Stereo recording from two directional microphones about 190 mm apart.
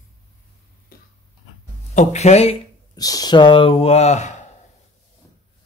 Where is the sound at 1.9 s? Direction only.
35° left (ahead or behind).